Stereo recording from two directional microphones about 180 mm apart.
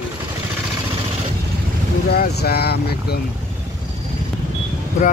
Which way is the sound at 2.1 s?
60° left (ahead or behind).